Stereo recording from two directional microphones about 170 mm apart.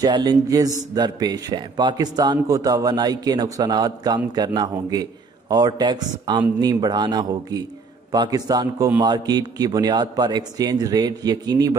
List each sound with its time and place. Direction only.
0.0 s a man's voice: 25° right (ahead or behind)